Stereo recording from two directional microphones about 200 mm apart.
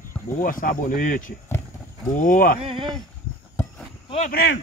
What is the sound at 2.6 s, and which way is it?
Speech, 25° right (ahead or behind).